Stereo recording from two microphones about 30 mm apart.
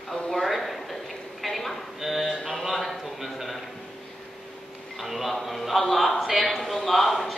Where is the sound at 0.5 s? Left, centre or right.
Centre.